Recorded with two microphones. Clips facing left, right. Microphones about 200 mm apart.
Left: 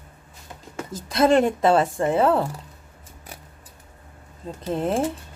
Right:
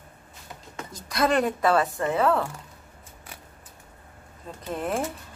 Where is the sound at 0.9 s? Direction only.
25° left (ahead or behind).